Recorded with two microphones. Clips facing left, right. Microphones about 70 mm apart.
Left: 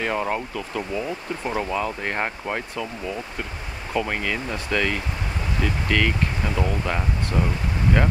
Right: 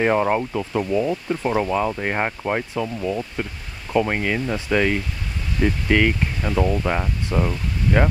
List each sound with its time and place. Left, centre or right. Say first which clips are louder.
0.0 s speech: right 6 dB; right